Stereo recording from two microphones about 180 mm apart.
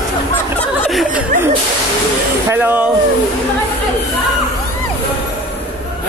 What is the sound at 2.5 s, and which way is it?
Speech, 10° right (ahead or behind).